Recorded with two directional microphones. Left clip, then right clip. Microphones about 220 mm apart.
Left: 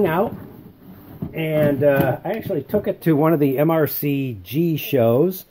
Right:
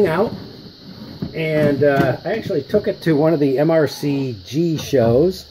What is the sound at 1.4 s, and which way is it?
Speech, 20° left (ahead or behind).